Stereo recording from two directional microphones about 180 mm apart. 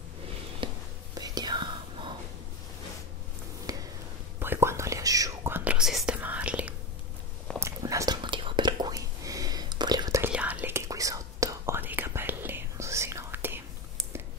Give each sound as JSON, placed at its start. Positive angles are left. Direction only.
{"t": 0.6, "sound": "whispering", "side_deg": -30}
{"t": 3.7, "sound": "a sound", "side_deg": -20}
{"t": 4.4, "sound": "whispering", "side_deg": -15}
{"t": 7.6, "sound": "whispering", "side_deg": -20}
{"t": 10.3, "sound": "whispering", "side_deg": -10}